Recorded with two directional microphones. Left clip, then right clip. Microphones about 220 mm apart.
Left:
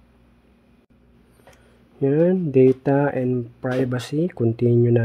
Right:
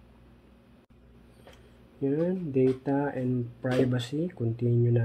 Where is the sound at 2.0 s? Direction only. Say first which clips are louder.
Left 10 dB; 35° left (ahead or behind).